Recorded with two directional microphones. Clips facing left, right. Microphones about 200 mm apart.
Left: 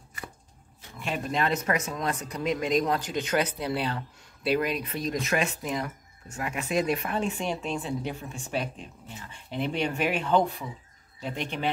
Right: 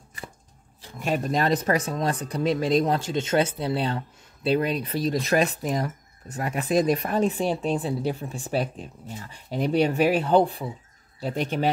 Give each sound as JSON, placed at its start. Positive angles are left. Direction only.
{"t": 0.9, "sound": "speech", "side_deg": -40}